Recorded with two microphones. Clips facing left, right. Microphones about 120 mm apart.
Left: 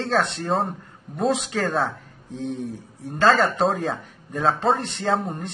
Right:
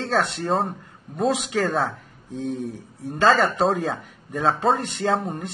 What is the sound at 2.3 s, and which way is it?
Speech, 40° right (ahead or behind).